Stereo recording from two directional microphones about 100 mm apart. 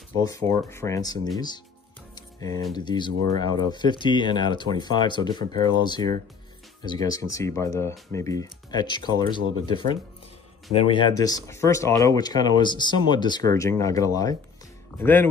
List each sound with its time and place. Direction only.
0.2 s speech: 35° left (ahead or behind)
2.1 s music: 40° left (ahead or behind)
2.7 s speech: 45° left (ahead or behind)
11.1 s speech: 40° left (ahead or behind)
13.5 s speech: 30° left (ahead or behind)
15.0 s speech: 20° left (ahead or behind)